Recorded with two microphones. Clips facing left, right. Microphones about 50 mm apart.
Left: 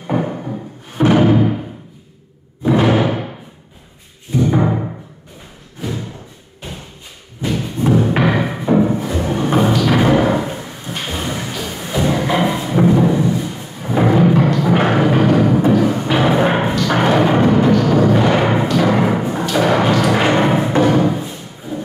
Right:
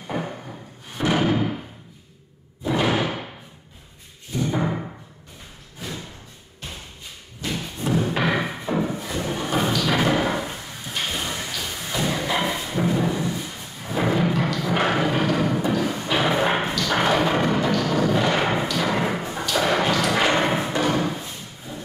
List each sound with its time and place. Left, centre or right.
0.1 s music: left
1.1 s music: centre
2.7 s music: centre
4.6 s music: left
7.4 s thump: centre
8.2 s music: centre
9.8 s thump: centre
12.6 s music: centre